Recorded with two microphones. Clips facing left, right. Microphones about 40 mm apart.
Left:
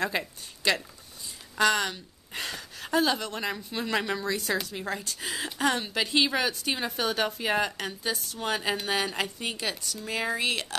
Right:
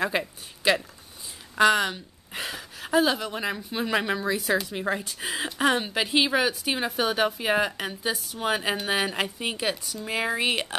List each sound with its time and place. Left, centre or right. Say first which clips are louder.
0.0 s a woman's voice: right 3 dB; centre